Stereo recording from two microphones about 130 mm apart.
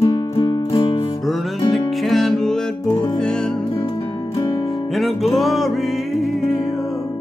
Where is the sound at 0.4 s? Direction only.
45° left (ahead or behind).